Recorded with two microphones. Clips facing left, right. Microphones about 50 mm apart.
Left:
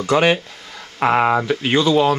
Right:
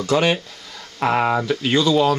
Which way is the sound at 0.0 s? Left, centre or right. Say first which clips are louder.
Left 3 dB; centre.